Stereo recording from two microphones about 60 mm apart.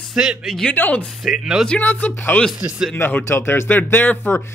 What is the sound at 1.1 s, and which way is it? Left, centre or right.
Speech, centre.